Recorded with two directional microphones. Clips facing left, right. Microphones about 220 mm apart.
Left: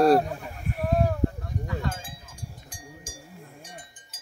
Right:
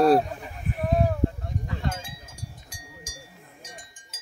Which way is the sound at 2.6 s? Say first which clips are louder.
Left 2 dB; 55° left (ahead or behind).